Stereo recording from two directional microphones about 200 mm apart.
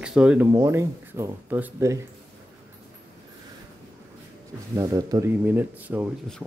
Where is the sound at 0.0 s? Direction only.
5° right (ahead or behind).